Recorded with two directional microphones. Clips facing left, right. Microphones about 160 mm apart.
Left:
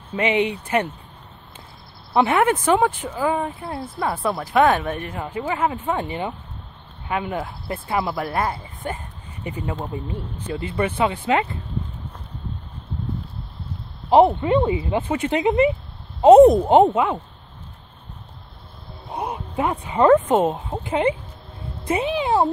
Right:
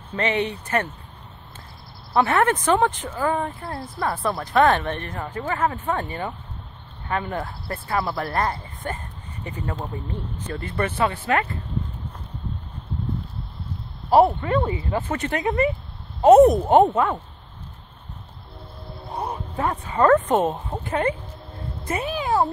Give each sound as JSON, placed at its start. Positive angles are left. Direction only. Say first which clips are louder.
{"t": 0.1, "sound": "speech", "louder": "left 3 dB", "side_deg": 10}
{"t": 2.1, "sound": "speech", "louder": "left 2 dB", "side_deg": 10}
{"t": 14.1, "sound": "speech", "louder": "left 2 dB", "side_deg": 20}
{"t": 16.9, "sound": "speech", "louder": "left 1 dB", "side_deg": 0}
{"t": 19.0, "sound": "speech", "louder": "left 1 dB", "side_deg": 10}
{"t": 20.4, "sound": "speech", "louder": "left 2 dB", "side_deg": 5}